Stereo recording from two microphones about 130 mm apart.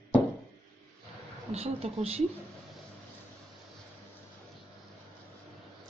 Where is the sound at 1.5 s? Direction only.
50° right (ahead or behind).